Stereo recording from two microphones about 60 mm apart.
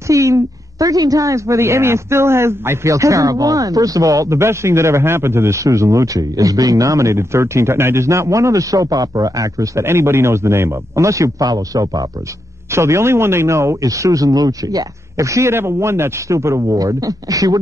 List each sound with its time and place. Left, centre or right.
0.1 s a man's voice: right
2.9 s speech: right
4.4 s a man's voice: right
9.8 s a man's voice: right
11.1 s speech: right
12.7 s a man's voice: right
15.5 s a man's voice: right
16.6 s speech: right